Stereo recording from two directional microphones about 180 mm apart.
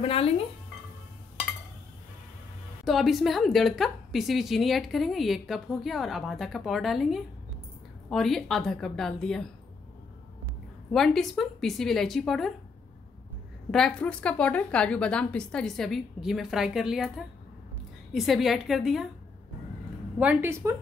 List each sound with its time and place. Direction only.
0.0 s speech: 30° left (ahead or behind)
2.8 s a woman's voice: centre (ahead or behind)
10.9 s a woman's voice: centre (ahead or behind)
13.7 s a woman's voice: 5° left (ahead or behind)
18.1 s a woman's voice: centre (ahead or behind)
20.2 s a woman's voice: 10° right (ahead or behind)